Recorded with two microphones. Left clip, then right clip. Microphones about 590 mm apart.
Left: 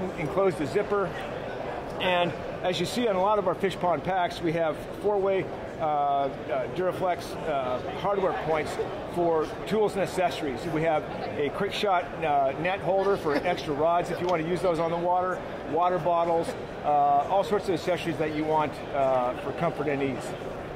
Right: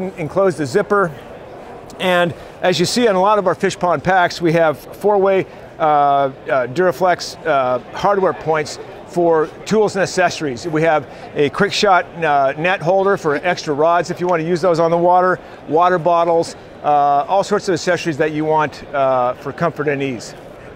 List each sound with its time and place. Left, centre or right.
0.4 s speech: right